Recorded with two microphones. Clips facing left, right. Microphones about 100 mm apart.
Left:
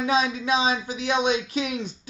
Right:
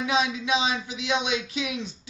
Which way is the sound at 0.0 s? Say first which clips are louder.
Left 2 dB; 40° left (ahead or behind).